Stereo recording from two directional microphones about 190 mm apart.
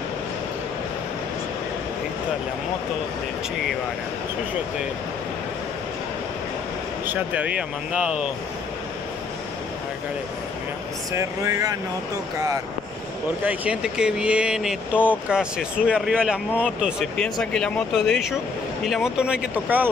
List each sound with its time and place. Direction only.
7.1 s speech: 5° right (ahead or behind)
11.1 s speech: 15° right (ahead or behind)
13.5 s speech: 5° right (ahead or behind)